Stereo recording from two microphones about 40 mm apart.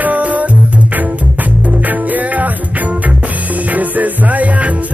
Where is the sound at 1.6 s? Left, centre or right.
Right.